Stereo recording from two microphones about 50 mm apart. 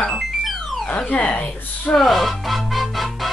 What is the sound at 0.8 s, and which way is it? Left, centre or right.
Speech, left.